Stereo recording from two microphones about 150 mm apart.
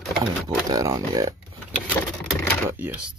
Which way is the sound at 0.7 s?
25° right (ahead or behind).